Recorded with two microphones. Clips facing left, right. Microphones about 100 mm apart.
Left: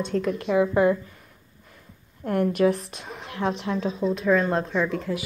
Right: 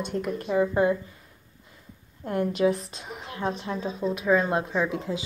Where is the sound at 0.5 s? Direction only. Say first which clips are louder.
Left 2 dB; 65° left (ahead or behind).